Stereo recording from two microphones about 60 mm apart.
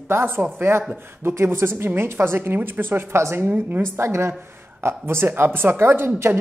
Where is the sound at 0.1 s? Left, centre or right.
Right.